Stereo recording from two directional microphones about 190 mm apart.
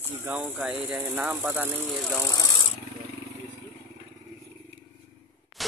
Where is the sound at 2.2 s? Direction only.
15° left (ahead or behind).